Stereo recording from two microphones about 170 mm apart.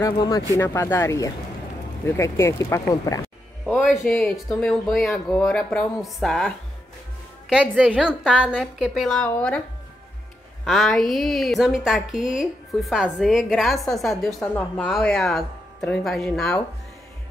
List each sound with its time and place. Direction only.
0.0 s speech: 20° left (ahead or behind)
3.8 s a woman's voice: centre (ahead or behind)
10.6 s a woman's voice: centre (ahead or behind)